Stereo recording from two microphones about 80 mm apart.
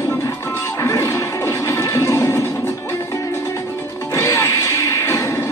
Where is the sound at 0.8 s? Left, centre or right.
Left.